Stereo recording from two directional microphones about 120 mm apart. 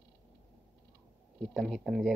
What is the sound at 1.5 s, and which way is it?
Speech, centre (ahead or behind).